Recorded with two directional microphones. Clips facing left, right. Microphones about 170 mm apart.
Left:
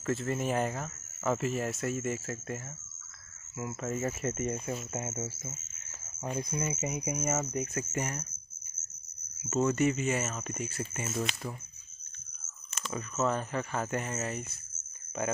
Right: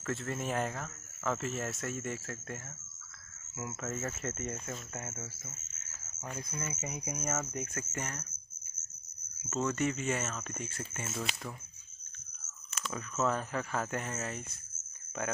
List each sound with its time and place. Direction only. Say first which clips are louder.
0.0 s speech: left 5 dB; 5° left (ahead or behind)
3.7 s speech: left 5 dB; 10° left (ahead or behind)
9.5 s speech: left 5 dB; 10° left (ahead or behind)
12.7 s a sound: left 2 dB; centre (ahead or behind)
13.2 s speech: left 2 dB; centre (ahead or behind)